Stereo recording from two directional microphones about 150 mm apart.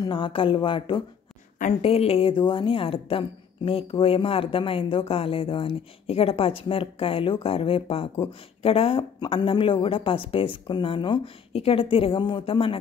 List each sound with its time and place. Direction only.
0.0 s a woman's voice: 35° left (ahead or behind)
1.6 s a woman's voice: 45° left (ahead or behind)